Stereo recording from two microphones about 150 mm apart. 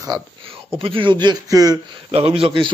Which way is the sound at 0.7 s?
35° right (ahead or behind).